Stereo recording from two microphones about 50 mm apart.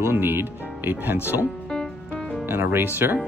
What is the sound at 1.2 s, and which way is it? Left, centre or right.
Speech, left.